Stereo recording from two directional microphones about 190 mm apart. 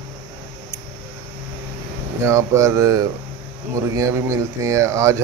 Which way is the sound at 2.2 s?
15° right (ahead or behind).